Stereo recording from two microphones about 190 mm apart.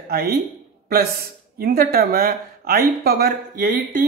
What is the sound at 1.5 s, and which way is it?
Speech, 50° right (ahead or behind).